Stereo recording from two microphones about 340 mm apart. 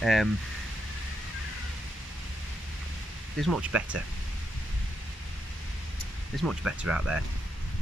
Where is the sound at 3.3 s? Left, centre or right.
Centre.